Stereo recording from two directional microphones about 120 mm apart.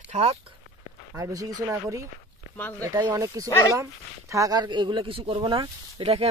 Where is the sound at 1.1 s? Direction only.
25° right (ahead or behind).